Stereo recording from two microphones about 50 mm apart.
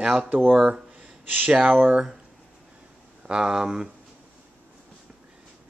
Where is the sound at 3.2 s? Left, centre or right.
Centre.